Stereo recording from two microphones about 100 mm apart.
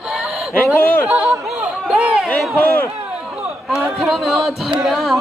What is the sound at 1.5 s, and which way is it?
Chatter, 5° right (ahead or behind).